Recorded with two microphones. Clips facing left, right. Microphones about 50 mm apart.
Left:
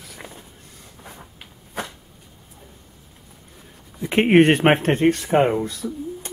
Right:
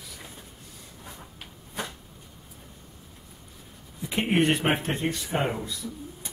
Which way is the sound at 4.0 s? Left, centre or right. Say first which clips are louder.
Left 10 dB; left.